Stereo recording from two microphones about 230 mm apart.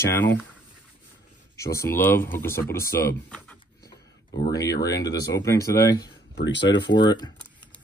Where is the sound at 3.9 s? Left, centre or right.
Left.